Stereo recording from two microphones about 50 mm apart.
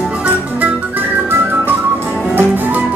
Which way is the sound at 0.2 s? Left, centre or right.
Right.